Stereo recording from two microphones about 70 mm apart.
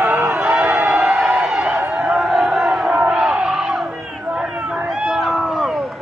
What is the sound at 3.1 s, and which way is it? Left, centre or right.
Crowd, centre.